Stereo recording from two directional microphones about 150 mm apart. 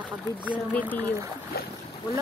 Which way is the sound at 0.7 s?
10° left (ahead or behind).